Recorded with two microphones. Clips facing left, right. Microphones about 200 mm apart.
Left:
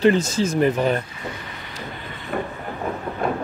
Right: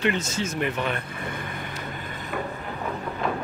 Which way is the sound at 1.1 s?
55° right (ahead or behind).